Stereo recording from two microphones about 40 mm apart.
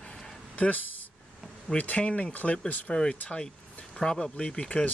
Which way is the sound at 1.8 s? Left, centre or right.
Left.